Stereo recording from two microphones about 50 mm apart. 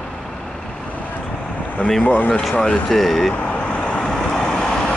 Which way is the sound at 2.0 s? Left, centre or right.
Left.